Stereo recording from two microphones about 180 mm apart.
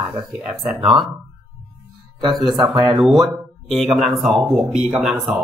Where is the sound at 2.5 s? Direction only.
25° right (ahead or behind).